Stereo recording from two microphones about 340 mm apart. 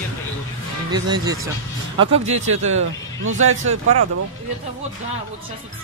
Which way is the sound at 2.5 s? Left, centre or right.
Right.